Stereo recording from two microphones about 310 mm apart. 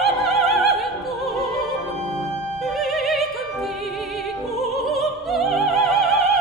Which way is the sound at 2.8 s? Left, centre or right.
Centre.